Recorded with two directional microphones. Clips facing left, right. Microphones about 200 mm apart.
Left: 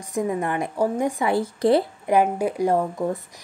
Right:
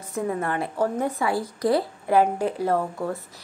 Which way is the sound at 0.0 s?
15° left (ahead or behind).